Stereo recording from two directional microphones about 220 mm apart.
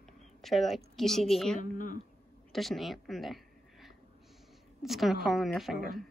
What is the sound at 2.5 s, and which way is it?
Speech, centre (ahead or behind).